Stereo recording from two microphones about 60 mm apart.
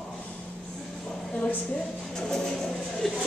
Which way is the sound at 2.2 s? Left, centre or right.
Centre.